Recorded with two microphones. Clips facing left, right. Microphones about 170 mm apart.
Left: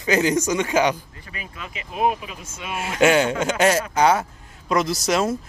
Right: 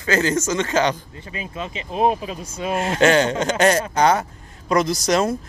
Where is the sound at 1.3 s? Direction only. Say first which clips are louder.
Right 7 dB; 25° right (ahead or behind).